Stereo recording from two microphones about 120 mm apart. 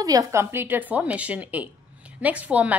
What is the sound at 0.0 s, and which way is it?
A woman's voice, 30° right (ahead or behind).